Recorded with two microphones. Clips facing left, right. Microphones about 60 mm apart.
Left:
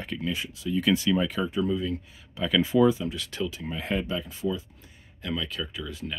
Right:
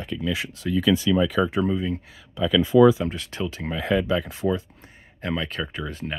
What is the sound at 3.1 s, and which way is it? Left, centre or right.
Speech, right.